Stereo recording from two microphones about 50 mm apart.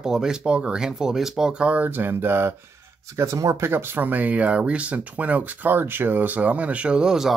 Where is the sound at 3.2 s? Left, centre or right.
Right.